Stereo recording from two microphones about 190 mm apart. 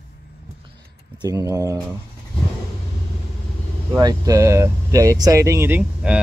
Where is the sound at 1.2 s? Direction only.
20° right (ahead or behind).